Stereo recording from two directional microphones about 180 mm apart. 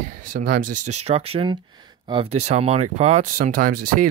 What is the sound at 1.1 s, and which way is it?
Speech, 35° right (ahead or behind).